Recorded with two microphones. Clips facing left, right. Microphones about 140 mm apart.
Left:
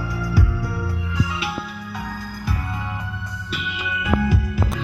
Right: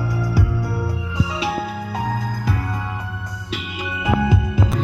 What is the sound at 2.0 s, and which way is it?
Music, 90° right.